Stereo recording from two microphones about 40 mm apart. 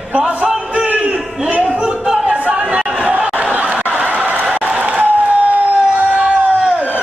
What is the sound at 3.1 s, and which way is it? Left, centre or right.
Chatter, right.